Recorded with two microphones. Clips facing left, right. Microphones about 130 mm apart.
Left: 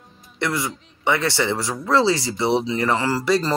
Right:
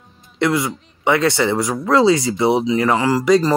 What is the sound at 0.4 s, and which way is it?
Speech, 20° right (ahead or behind).